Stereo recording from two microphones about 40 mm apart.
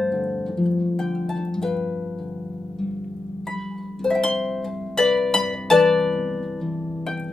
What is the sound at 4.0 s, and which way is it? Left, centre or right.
Harp, centre.